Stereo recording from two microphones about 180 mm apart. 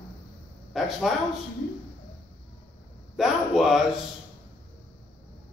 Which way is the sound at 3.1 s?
Centre (ahead or behind).